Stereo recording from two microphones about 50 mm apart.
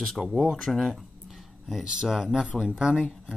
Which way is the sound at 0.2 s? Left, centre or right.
Centre.